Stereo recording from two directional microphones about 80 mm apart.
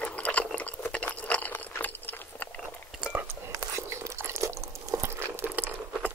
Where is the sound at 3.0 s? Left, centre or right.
Centre.